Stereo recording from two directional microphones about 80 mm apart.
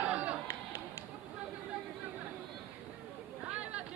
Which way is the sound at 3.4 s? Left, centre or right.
Centre.